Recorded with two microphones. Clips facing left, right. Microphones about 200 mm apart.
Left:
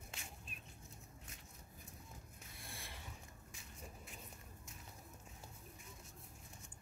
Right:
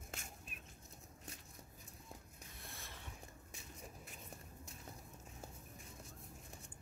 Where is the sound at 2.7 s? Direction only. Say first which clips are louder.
Left 3 dB; 15° left (ahead or behind).